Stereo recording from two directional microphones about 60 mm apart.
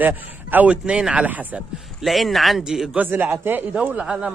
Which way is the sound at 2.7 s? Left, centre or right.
Centre.